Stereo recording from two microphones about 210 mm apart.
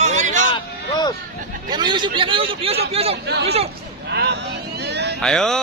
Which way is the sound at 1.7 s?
20° right (ahead or behind).